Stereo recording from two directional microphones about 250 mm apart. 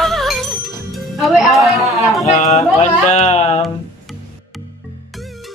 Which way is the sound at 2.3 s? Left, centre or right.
Left.